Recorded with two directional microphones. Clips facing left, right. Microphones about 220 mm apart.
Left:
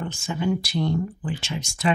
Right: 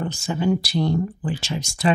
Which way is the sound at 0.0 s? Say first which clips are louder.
Right 3 dB; 35° right (ahead or behind).